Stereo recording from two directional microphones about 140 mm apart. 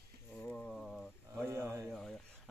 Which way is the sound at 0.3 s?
10° left (ahead or behind).